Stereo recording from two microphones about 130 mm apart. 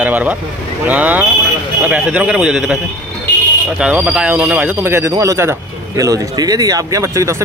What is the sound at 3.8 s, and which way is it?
A man's voice, 10° right (ahead or behind).